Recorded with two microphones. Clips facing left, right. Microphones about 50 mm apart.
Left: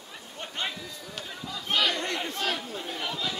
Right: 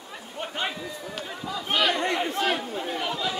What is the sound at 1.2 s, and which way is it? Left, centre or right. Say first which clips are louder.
Speech: right 4 dB; centre.